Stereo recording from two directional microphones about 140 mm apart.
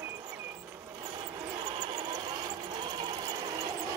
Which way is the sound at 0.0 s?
20° right (ahead or behind).